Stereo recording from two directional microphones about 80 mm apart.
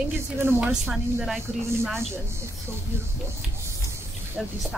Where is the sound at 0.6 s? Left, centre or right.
Centre.